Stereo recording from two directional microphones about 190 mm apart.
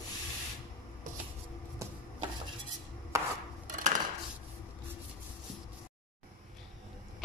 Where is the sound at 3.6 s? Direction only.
45° right (ahead or behind).